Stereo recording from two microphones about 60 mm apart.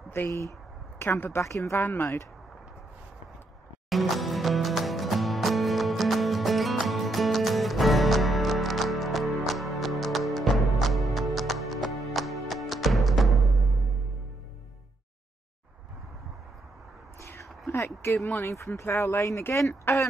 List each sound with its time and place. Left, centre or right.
0.9 s a woman's voice: left
1.8 s speech: left
3.9 s music: centre
17.6 s a sound: left
18.4 s speech: left
19.7 s speech: left